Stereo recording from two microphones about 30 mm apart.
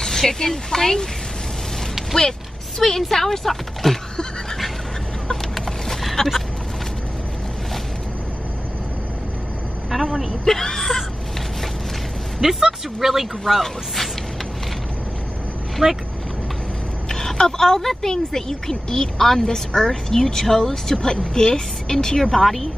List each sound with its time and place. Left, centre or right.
0.0 s a sound: centre
0.5 s speech: centre
2.1 s speech: left
3.0 s speech: centre
5.3 s chicken: centre
6.2 s speech: centre
9.9 s vehicle: centre
10.4 s a sound: centre
12.4 s speech: centre
15.8 s speech: centre
17.1 s vehicle: centre
17.7 s speech: centre